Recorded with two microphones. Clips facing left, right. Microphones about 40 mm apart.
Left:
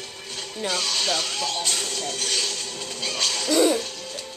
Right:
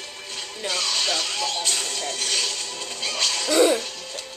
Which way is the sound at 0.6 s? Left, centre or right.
Centre.